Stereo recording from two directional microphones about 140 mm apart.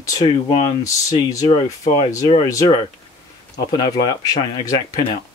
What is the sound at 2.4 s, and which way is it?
Speech, 25° left (ahead or behind).